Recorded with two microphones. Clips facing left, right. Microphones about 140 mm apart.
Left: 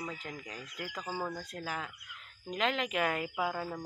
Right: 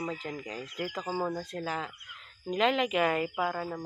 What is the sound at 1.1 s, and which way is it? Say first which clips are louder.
Speech: right 5 dB; 15° right (ahead or behind).